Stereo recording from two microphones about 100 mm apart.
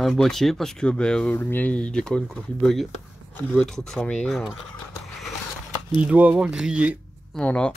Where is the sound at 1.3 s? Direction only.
20° left (ahead or behind).